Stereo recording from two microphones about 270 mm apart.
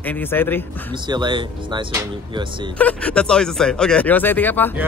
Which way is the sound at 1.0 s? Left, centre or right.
Centre.